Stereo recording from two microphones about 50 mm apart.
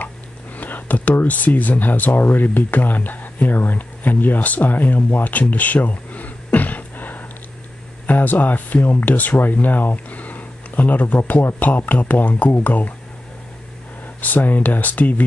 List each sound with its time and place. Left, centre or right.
0.6 s a sound: left
1.2 s speech: left
14.2 s speech: left